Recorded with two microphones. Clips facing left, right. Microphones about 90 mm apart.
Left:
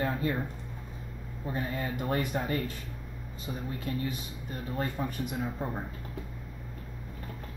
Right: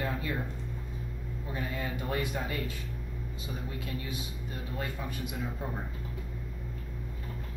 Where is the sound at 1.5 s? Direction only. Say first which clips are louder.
Left 3 dB; 40° left (ahead or behind).